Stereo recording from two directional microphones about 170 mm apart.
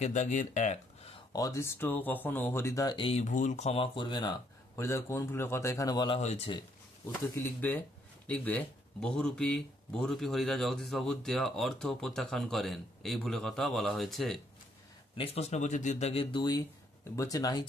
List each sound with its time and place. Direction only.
0.0 s speech: 45° left (ahead or behind)
1.3 s speech: 20° left (ahead or behind)
4.7 s speech: 15° left (ahead or behind); by 6.6 s 35° left (ahead or behind)
7.3 s speech: 10° left (ahead or behind)
15.1 s speech: 35° left (ahead or behind)